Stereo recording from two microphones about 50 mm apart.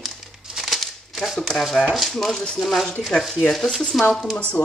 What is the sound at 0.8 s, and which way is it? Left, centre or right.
Crumpling, centre.